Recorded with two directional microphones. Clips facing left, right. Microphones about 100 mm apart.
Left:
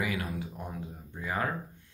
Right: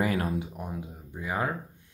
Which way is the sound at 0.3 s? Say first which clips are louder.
Right 5 dB; 20° right (ahead or behind).